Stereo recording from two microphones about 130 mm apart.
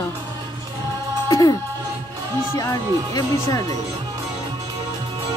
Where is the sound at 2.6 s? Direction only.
25° left (ahead or behind).